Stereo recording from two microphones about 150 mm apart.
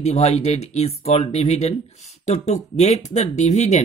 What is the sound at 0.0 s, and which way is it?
Speech, 45° left (ahead or behind).